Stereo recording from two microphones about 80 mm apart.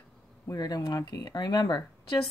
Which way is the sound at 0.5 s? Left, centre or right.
Left.